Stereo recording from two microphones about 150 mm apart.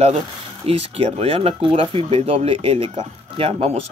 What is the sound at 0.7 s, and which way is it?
Speech, 45° right (ahead or behind).